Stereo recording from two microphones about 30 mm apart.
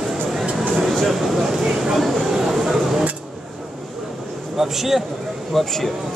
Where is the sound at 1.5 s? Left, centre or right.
Centre.